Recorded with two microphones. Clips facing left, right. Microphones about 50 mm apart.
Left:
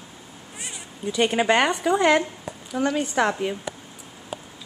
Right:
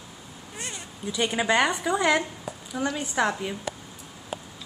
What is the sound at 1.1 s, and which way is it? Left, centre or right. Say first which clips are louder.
A woman's voice: left 4 dB; left.